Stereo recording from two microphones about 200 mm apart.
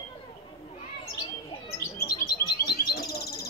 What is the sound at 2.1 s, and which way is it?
Bird, 50° left (ahead or behind).